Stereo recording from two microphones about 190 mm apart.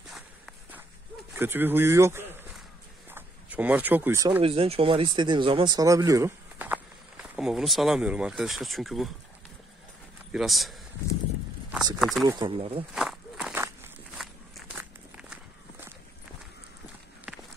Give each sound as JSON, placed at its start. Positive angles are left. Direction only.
{"t": 0.1, "sound": "walk", "side_deg": 0}
{"t": 1.3, "sound": "speech", "side_deg": -10}
{"t": 3.1, "sound": "a sound", "side_deg": -10}
{"t": 4.4, "sound": "speech", "side_deg": -30}
{"t": 10.3, "sound": "speech", "side_deg": 0}
{"t": 12.3, "sound": "speech", "side_deg": -25}
{"t": 12.9, "sound": "walk", "side_deg": 0}
{"t": 17.3, "sound": "walk", "side_deg": 0}